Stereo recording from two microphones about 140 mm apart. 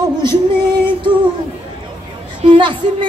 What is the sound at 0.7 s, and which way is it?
Female singing, 35° right (ahead or behind).